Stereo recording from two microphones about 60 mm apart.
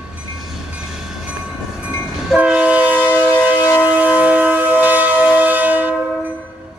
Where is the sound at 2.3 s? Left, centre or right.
Right.